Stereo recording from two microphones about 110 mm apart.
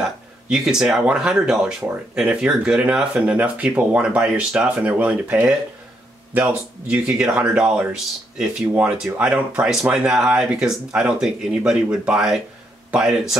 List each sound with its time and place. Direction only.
0.0 s speech: 5° right (ahead or behind)